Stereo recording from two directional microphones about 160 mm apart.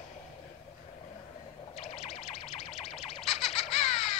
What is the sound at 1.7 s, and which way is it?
Music, 45° left (ahead or behind).